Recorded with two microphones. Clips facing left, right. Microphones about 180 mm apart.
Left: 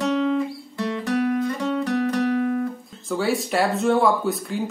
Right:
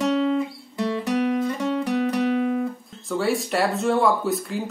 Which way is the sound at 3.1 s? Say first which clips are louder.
Even; centre (ahead or behind).